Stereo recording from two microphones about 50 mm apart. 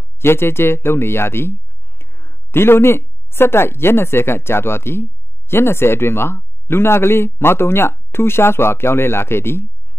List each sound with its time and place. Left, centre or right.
0.2 s a man's voice: left